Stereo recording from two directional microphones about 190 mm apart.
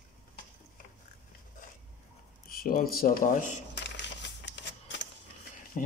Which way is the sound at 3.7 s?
65° left (ahead or behind).